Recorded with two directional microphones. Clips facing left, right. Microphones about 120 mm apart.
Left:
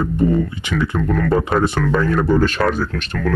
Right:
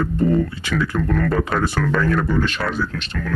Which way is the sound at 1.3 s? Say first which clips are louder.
Left 3 dB; 25° left (ahead or behind).